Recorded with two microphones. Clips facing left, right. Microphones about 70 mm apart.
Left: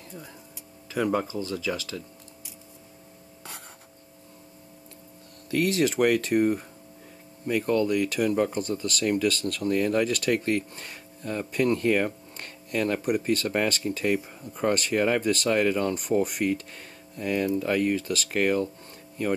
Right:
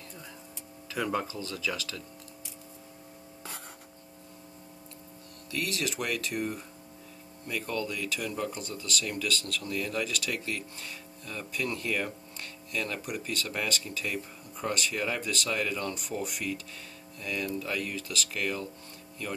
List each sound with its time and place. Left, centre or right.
1.0 s speech: left
5.5 s speech: left
7.9 s speech: left